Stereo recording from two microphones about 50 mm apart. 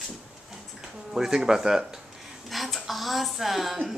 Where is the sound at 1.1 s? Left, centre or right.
Centre.